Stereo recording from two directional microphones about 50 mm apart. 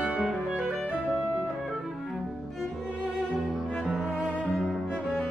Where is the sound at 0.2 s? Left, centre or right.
Centre.